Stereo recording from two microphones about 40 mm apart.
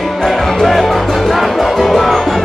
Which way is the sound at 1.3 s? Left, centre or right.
Centre.